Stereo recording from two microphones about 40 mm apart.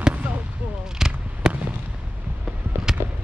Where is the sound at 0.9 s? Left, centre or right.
Centre.